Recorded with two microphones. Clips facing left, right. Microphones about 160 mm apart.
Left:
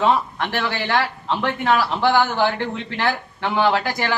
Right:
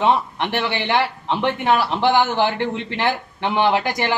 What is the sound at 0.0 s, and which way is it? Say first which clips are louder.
A man's voice: right 1 dB; 20° right (ahead or behind).